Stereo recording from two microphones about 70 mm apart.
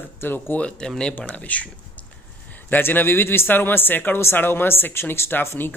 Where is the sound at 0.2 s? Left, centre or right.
Left.